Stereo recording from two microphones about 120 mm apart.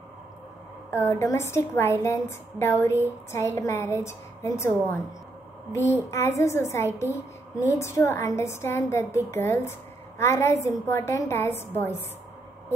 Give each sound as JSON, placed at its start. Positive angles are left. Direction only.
{"t": 0.8, "sound": "a woman's voice", "side_deg": 20}